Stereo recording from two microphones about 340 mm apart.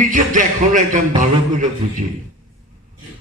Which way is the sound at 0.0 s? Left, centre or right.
Right.